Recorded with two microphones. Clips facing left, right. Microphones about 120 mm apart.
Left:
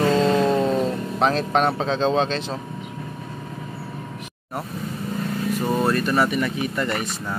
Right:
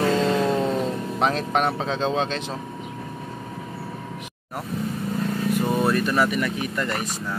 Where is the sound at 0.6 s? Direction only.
5° right (ahead or behind).